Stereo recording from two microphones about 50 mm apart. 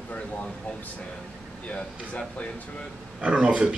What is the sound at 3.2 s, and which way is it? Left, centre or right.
Speech, right.